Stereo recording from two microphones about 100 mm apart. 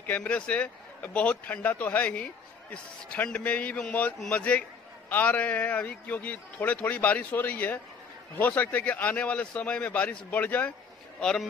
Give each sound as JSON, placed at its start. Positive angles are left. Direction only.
{"t": 0.0, "sound": "a man's voice", "side_deg": 15}